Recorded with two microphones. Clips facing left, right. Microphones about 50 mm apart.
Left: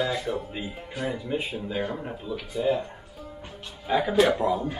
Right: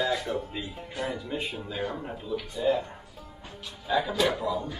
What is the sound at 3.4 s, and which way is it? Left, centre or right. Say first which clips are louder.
Music: right 1 dB; left.